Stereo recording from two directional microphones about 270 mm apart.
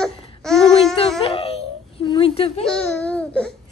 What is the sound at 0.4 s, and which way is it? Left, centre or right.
Babbling, centre.